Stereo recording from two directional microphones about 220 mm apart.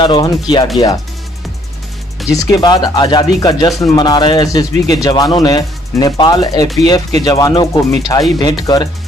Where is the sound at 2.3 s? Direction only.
15° left (ahead or behind).